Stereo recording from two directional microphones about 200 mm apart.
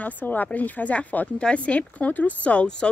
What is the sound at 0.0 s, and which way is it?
Speech, 10° left (ahead or behind).